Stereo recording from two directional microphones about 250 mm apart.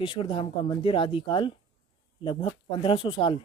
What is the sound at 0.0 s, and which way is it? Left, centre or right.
Speech, centre.